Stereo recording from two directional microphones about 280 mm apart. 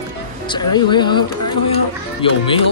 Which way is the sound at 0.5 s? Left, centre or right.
Centre.